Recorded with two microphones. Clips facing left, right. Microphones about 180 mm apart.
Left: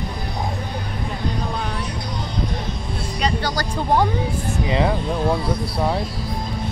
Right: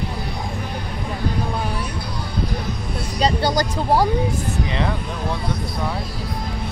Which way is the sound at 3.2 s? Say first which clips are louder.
Right 4 dB; 30° right (ahead or behind).